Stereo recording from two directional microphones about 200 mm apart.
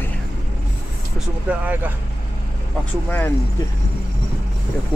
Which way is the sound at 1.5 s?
10° right (ahead or behind).